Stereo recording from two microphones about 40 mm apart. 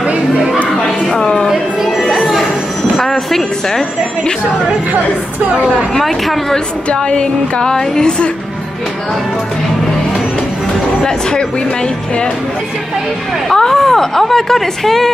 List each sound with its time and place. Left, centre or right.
0.8 s a sound: centre
1.5 s chatter: centre
3.0 s speech: centre
5.9 s speech: centre
6.9 s speech: left
13.5 s speech: centre